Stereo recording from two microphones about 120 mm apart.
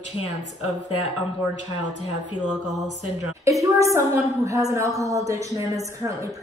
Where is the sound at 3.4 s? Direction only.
25° right (ahead or behind).